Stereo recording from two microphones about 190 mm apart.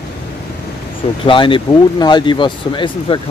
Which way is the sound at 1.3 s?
25° left (ahead or behind).